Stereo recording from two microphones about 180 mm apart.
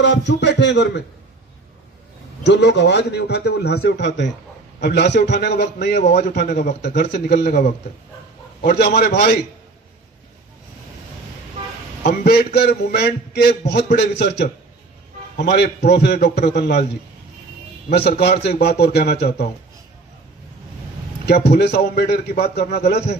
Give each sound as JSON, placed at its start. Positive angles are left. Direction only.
{"t": 0.0, "sound": "a man's voice", "side_deg": 80}
{"t": 2.4, "sound": "a man's voice", "side_deg": 70}
{"t": 8.5, "sound": "a man's voice", "side_deg": 60}
{"t": 12.0, "sound": "a man's voice", "side_deg": 65}
{"t": 17.8, "sound": "a man's voice", "side_deg": 65}
{"t": 21.5, "sound": "a man's voice", "side_deg": 65}